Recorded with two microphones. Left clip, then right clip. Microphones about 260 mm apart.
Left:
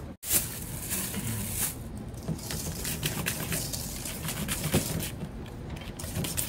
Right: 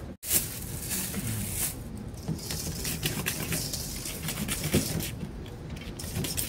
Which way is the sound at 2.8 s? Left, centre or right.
Left.